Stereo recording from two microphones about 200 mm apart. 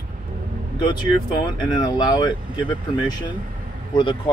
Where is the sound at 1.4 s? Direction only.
20° left (ahead or behind).